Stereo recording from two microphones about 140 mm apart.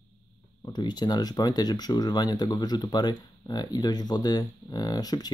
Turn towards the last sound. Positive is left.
turn(degrees=30)  # may be behind; listen again after turning